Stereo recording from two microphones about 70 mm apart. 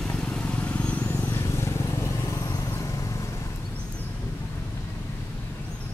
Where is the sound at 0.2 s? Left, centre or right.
Centre.